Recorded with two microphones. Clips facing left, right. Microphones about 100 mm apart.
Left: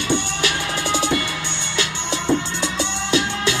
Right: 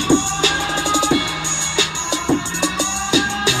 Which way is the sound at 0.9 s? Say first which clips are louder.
Right 4 dB; 20° right (ahead or behind).